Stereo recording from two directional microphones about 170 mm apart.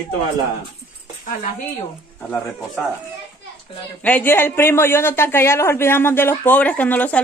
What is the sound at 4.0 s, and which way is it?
Speech, 10° left (ahead or behind).